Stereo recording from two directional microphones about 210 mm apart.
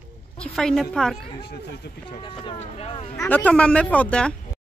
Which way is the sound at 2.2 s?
25° left (ahead or behind).